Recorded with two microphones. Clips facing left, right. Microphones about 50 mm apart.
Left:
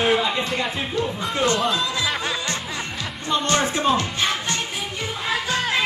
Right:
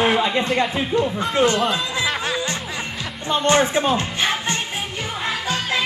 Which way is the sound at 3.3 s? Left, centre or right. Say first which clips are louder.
Right 4 dB; right.